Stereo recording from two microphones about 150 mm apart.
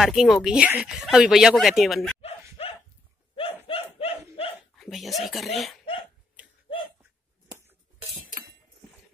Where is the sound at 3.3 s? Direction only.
40° left (ahead or behind).